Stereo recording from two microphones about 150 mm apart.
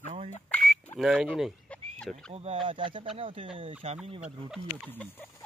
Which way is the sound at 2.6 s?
35° right (ahead or behind).